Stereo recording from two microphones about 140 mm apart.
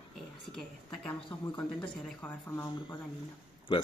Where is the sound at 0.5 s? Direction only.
5° left (ahead or behind).